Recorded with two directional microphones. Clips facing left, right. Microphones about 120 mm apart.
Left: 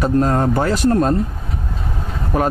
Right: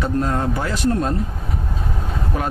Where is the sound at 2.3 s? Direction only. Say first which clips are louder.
Left 8 dB; 45° left (ahead or behind).